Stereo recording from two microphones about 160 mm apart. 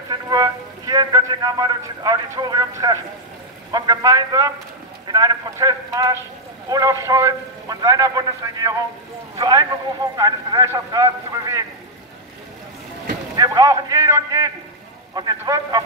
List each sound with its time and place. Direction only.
0.1 s a man's voice: 25° right (ahead or behind)
13.4 s a man's voice: 20° right (ahead or behind)